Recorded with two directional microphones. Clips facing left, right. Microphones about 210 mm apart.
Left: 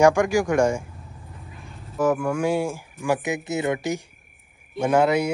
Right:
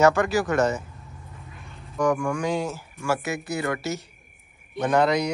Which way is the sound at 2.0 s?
5° left (ahead or behind).